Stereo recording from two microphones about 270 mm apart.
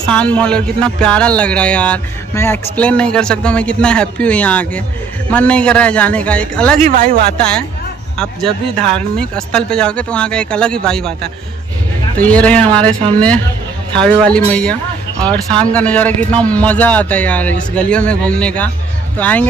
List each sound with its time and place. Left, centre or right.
0.0 s speech: centre
6.8 s speech: right
7.3 s speech: centre
12.2 s speech: centre
13.9 s speech: centre